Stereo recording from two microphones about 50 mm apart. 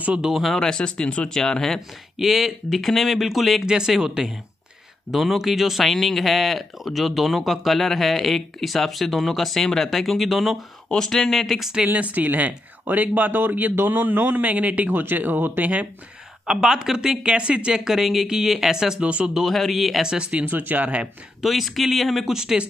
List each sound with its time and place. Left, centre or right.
0.6 s speech: centre
1.4 s speech: centre
2.1 s speech: centre
3.6 s speech: centre
10.9 s speech: centre
11.9 s speech: right
16.4 s speech: centre
18.9 s speech: right
19.3 s speech: centre
20.1 s speech: centre
20.3 s speech: right
21.4 s speech: centre